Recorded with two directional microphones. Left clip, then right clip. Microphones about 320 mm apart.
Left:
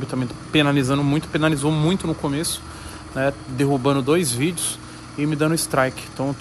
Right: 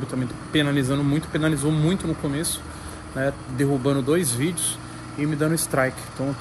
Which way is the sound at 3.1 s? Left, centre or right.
Centre.